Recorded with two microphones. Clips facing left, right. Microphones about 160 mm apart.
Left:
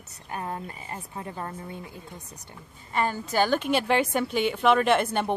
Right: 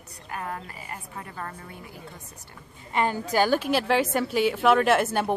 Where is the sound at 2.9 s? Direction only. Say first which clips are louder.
Right 2 dB; 15° right (ahead or behind).